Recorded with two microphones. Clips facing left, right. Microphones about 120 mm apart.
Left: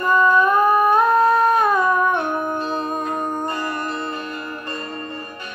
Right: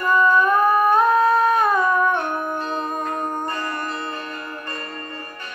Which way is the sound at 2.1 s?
10° left (ahead or behind).